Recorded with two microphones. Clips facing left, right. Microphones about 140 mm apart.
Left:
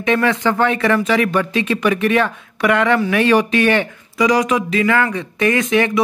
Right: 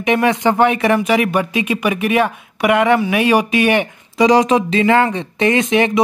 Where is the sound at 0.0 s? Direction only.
20° right (ahead or behind).